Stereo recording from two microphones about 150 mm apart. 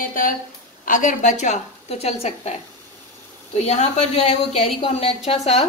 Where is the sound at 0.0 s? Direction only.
65° left (ahead or behind).